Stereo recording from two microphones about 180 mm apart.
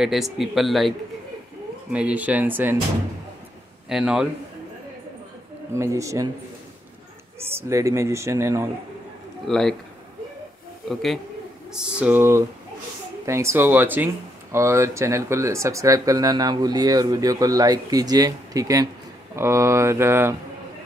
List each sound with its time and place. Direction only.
0.0 s speech: centre (ahead or behind)
3.9 s speech: 5° right (ahead or behind)
5.8 s speech: 15° right (ahead or behind)
7.3 s speech: 15° right (ahead or behind)
9.5 s speech: 5° left (ahead or behind)
10.9 s speech: centre (ahead or behind)